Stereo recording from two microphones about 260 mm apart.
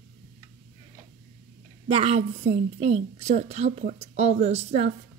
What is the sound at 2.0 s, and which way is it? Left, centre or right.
A woman's voice, right.